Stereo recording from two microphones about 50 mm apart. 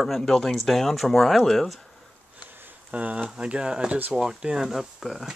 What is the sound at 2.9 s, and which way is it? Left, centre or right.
Speech, right.